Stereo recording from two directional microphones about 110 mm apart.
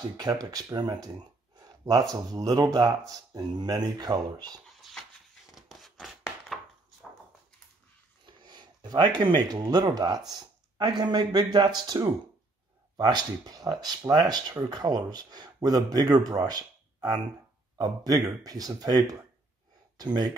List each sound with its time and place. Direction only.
0.2 s speech: 35° right (ahead or behind)
5.5 s a sound: 5° right (ahead or behind)
8.3 s speech: 40° right (ahead or behind)